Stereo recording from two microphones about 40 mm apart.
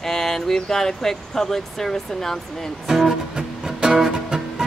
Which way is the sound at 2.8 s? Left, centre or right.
Centre.